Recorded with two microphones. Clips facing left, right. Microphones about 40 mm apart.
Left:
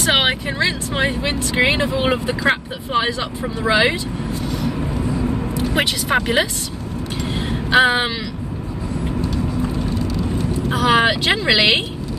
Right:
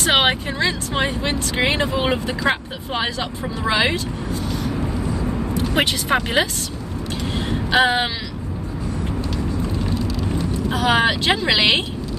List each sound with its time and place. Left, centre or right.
0.2 s speech: centre
0.7 s speech: centre
3.6 s speech: centre
4.3 s vehicle: left
5.8 s speech: centre
7.3 s vehicle: centre
10.8 s speech: centre